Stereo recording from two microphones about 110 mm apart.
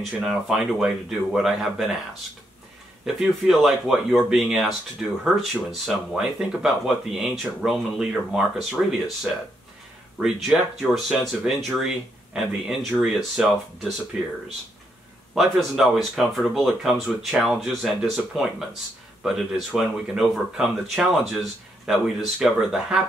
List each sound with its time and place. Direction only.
0.0 s speech: 5° right (ahead or behind)
3.2 s speech: 5° right (ahead or behind)
13.0 s speech: 5° right (ahead or behind)
15.3 s speech: 5° right (ahead or behind)